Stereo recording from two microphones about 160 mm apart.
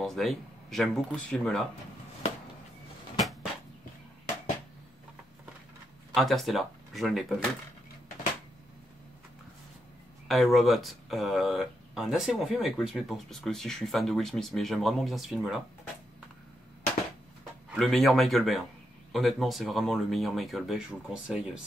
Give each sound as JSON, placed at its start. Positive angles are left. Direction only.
{"t": 0.0, "sound": "speech", "side_deg": 0}
{"t": 6.1, "sound": "speech", "side_deg": 0}
{"t": 10.2, "sound": "speech", "side_deg": 0}
{"t": 17.6, "sound": "speech", "side_deg": 0}